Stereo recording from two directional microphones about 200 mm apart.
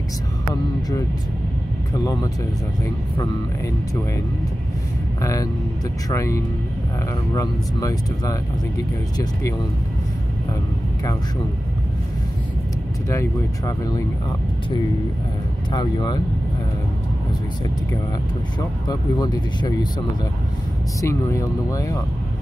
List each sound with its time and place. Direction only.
5.2 s speech: 15° left (ahead or behind)
13.1 s speech: 15° left (ahead or behind)
15.7 s speech: 20° left (ahead or behind)
18.6 s speech: 20° left (ahead or behind)
21.0 s speech: 15° left (ahead or behind)